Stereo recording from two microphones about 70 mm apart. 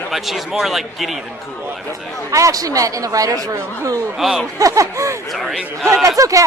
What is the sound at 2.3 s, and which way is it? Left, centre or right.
Speech, right.